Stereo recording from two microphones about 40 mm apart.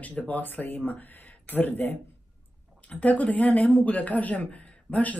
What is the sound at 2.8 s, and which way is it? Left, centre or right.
Speech, left.